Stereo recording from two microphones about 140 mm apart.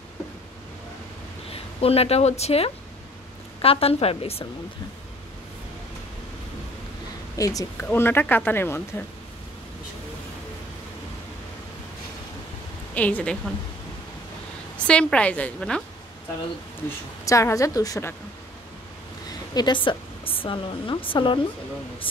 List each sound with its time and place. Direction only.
1.5 s a woman's voice: 45° left (ahead or behind)
7.3 s speech: 25° left (ahead or behind)
12.9 s speech: 10° left (ahead or behind)
14.8 s speech: 10° left (ahead or behind)
17.2 s a woman's voice: 20° left (ahead or behind)
19.5 s speech: 30° left (ahead or behind)